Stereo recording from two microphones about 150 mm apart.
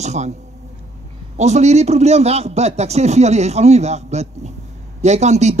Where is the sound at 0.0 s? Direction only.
50° right (ahead or behind).